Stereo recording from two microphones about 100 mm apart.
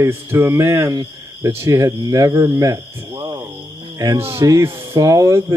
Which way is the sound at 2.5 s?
30° right (ahead or behind).